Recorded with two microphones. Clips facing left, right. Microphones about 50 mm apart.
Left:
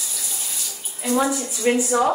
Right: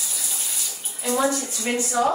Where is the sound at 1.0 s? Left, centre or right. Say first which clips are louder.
Left 1 dB; centre.